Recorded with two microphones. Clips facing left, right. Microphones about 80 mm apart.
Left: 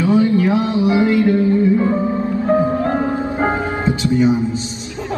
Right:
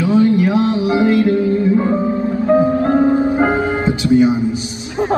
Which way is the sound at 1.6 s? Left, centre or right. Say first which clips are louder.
Even; right.